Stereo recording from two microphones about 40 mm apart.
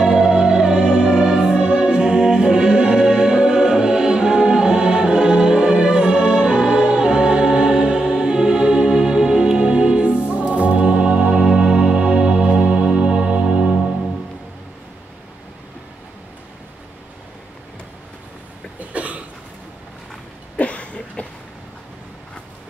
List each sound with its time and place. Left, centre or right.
0.4 s music: centre
18.8 s cough: right
20.5 s a sound: left